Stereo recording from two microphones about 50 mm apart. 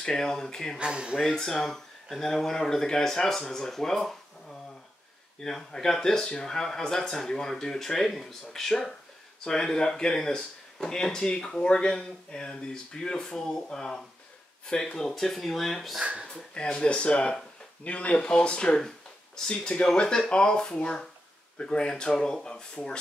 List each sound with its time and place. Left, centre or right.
0.0 s speech: centre
0.7 s speech: centre
1.3 s speech: centre
5.4 s speech: centre
16.5 s speech: centre